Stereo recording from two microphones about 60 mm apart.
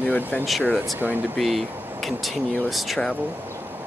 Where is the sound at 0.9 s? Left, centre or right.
Right.